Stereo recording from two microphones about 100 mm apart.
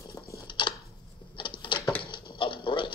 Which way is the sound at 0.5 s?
55° left (ahead or behind).